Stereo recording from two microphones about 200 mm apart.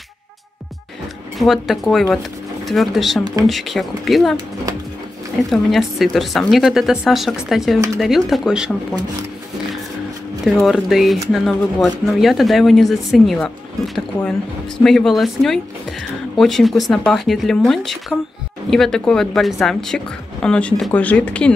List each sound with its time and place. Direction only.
1.4 s a woman's voice: centre (ahead or behind)
5.5 s a woman's voice: centre (ahead or behind)
10.4 s a woman's voice: centre (ahead or behind)
14.8 s a woman's voice: centre (ahead or behind)